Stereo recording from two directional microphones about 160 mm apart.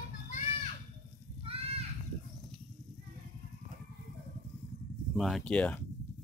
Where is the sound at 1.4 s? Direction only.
35° right (ahead or behind).